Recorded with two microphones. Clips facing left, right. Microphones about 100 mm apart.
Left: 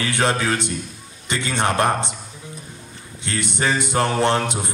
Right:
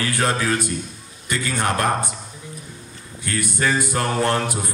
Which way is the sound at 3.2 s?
25° left (ahead or behind).